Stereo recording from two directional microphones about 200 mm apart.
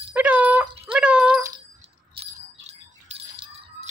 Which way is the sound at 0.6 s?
25° right (ahead or behind).